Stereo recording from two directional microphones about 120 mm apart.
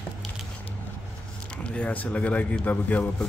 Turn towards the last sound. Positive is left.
turn(degrees=15)  # may be behind; listen again after turning